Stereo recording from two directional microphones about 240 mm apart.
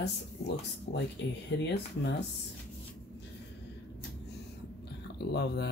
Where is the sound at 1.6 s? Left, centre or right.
Left.